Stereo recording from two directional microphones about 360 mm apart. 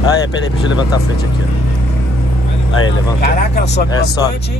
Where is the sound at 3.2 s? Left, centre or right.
Left.